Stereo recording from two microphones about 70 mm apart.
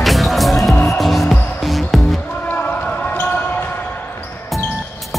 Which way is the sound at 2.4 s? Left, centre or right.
Left.